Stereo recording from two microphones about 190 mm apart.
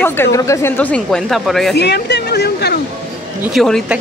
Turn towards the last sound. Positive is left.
turn(degrees=0)  # may be behind; listen again after turning